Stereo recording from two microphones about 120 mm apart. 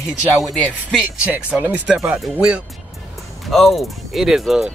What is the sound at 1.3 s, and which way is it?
Speech, 10° right (ahead or behind).